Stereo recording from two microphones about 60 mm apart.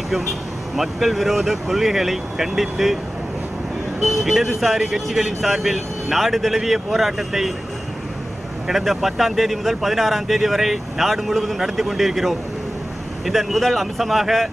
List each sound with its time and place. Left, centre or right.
0.7 s speech: centre
4.0 s speech: centre
8.6 s speech: centre